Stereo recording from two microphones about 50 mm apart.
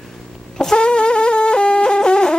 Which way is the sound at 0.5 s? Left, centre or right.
Centre.